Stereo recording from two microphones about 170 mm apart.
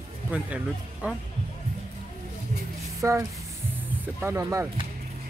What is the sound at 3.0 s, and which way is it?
Speech, 20° right (ahead or behind).